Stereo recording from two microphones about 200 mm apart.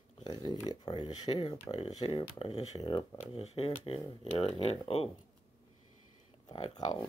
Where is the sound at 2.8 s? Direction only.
20° left (ahead or behind).